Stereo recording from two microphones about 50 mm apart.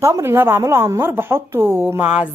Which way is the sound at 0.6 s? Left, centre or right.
Right.